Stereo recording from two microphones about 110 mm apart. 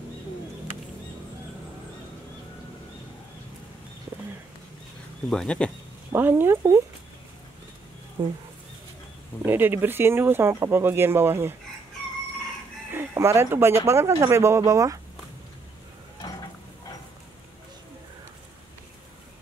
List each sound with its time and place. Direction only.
5.3 s speech: 5° left (ahead or behind)
6.1 s speech: 20° right (ahead or behind)
9.4 s speech: 20° right (ahead or behind)
12.9 s speech: 25° right (ahead or behind)